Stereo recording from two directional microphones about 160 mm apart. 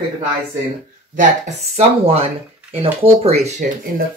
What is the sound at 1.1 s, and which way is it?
Speech, 50° right (ahead or behind).